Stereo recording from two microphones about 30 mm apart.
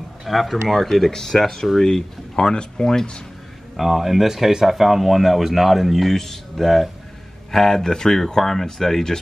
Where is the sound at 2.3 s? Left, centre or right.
Left.